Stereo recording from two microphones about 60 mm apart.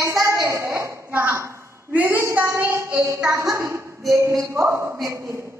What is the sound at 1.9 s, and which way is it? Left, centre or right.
A woman's voice, right.